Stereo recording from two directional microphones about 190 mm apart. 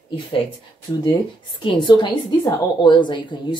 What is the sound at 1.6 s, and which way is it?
Speech, 25° left (ahead or behind).